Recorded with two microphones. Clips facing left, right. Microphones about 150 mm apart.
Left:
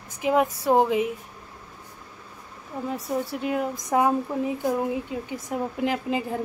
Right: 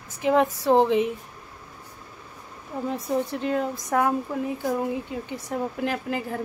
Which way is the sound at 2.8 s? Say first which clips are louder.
Right 2 dB; 5° left (ahead or behind).